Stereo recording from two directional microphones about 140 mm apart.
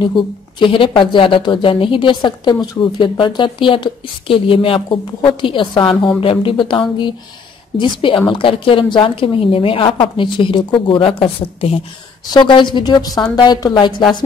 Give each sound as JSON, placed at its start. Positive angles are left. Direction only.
{"t": 0.0, "sound": "a woman's voice", "side_deg": 35}